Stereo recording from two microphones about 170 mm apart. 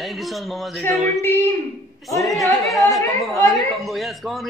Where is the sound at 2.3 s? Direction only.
Centre (ahead or behind).